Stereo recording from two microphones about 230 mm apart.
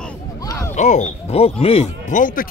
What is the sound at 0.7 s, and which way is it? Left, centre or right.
Speech, left.